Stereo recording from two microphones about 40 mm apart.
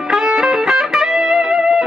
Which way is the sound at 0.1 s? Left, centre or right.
Centre.